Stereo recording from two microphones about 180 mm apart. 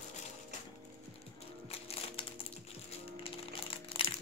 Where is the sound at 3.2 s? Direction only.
30° left (ahead or behind).